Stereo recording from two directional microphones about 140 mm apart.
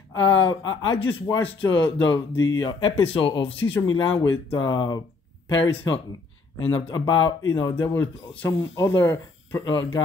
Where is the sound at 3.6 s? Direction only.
30° left (ahead or behind).